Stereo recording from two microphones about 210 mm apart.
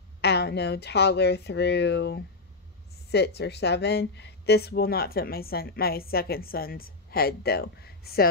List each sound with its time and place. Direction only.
0.2 s speech: 50° left (ahead or behind)